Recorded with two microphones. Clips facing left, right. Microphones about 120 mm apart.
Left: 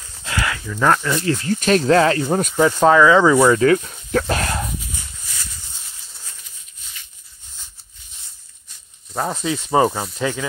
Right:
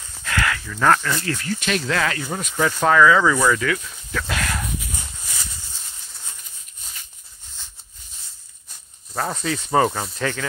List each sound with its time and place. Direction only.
0.2 s livestock: 25° left (ahead or behind)
0.7 s speech: 15° left (ahead or behind)
1.6 s speech: 40° left (ahead or behind)
2.5 s speech: 20° left (ahead or behind)
6.8 s a sound: 40° right (ahead or behind)
9.4 s speech: 15° left (ahead or behind)